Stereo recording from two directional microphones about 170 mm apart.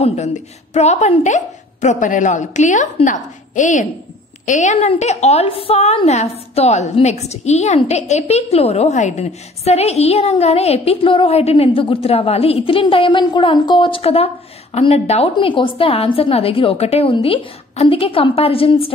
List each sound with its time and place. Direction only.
0.0 s a woman's voice: 40° left (ahead or behind)